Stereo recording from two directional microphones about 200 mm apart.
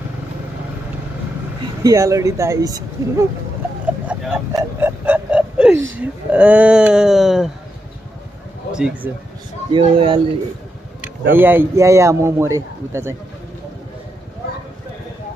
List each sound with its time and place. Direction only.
1.8 s a man's voice: 15° right (ahead or behind)
8.7 s speech: 5° right (ahead or behind)
9.8 s speech: 25° right (ahead or behind)
11.3 s a man's voice: 10° right (ahead or behind)